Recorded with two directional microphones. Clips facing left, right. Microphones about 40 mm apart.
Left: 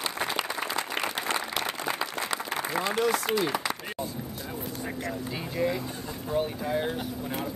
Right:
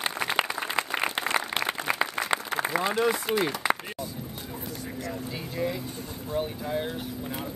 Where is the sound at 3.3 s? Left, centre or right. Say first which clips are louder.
Right 1 dB; centre.